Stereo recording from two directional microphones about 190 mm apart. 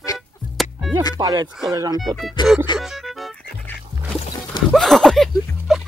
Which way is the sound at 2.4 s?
25° left (ahead or behind).